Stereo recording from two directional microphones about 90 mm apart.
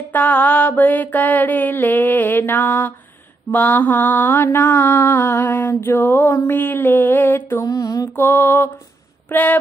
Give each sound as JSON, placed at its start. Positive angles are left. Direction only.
{"t": 0.1, "sound": "mantra", "side_deg": 20}
{"t": 7.6, "sound": "a sound", "side_deg": 40}
{"t": 8.2, "sound": "mantra", "side_deg": 25}